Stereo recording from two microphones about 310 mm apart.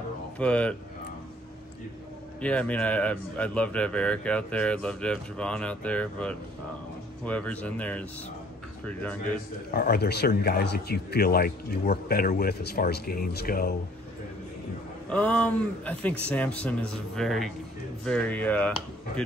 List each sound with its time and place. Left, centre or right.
0.4 s speech: centre
2.4 s speech: centre
9.7 s a man's voice: left
15.0 s speech: centre